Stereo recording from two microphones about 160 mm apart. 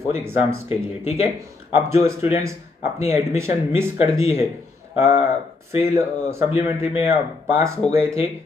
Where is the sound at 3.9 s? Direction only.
40° left (ahead or behind).